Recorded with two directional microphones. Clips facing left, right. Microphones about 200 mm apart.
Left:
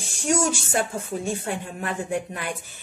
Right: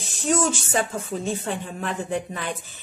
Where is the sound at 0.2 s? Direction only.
10° left (ahead or behind).